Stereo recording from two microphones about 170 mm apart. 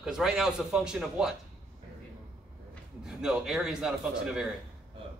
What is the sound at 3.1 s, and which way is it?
A man's voice, 5° right (ahead or behind).